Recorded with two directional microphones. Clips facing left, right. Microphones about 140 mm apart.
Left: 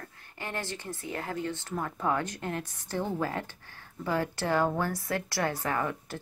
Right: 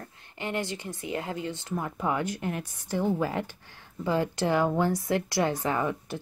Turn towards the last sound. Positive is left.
turn(degrees=-20)  # may be behind; listen again after turning